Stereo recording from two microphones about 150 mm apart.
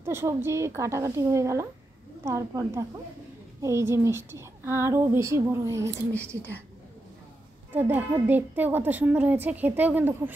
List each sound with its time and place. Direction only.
0.0 s a woman's voice: 15° right (ahead or behind)
6.1 s speech: 10° left (ahead or behind)
7.7 s a woman's voice: 10° right (ahead or behind)